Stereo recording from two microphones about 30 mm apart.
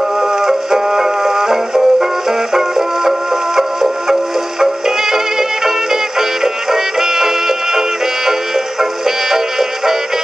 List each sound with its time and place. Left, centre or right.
0.5 s music: centre
3.1 s music: centre
9.0 s music: centre